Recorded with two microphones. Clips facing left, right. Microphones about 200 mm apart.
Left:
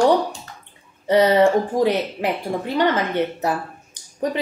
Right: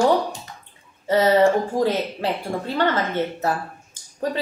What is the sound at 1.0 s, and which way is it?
A woman's voice, 15° left (ahead or behind).